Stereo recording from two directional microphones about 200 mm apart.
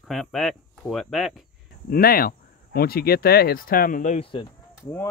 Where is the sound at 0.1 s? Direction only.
Centre (ahead or behind).